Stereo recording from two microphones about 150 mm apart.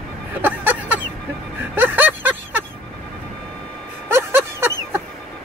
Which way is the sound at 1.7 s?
10° right (ahead or behind).